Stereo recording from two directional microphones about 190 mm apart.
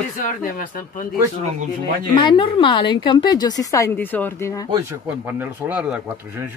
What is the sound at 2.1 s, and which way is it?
A woman's voice, 25° left (ahead or behind).